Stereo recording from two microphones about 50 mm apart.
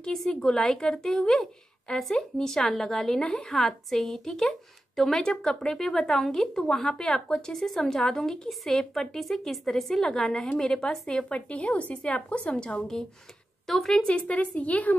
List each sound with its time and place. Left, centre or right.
0.0 s a woman's voice: centre
13.7 s a woman's voice: centre
14.0 s speech: left